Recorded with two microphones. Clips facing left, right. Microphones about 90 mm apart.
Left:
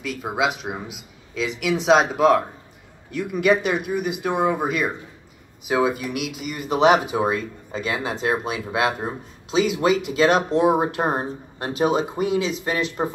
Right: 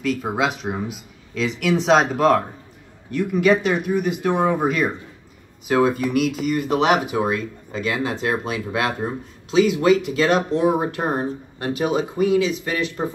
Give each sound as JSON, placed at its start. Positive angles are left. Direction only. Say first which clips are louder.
{"t": 0.0, "sound": "speech", "louder": "right 2 dB", "side_deg": 5}
{"t": 6.9, "sound": "speech", "louder": "left 1 dB", "side_deg": 25}